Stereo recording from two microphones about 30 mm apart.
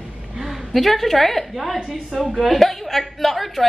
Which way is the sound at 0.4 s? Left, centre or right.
Centre.